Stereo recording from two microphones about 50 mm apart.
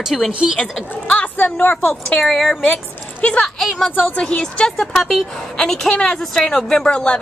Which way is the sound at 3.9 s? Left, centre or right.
Left.